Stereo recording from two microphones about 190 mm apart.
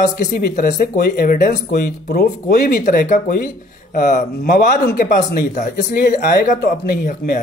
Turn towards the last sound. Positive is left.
turn(degrees=45)  # may be behind; listen again after turning